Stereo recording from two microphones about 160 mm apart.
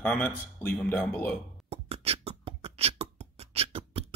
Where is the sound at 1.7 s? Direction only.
40° right (ahead or behind).